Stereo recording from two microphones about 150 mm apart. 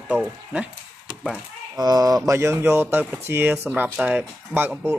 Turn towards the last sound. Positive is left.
turn(degrees=-15)  # may be behind; listen again after turning